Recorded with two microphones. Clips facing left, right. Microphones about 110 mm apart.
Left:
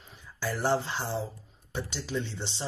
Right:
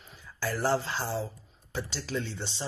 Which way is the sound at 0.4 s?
25° left (ahead or behind).